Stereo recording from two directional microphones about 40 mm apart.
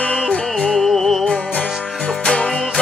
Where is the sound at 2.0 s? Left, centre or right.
Left.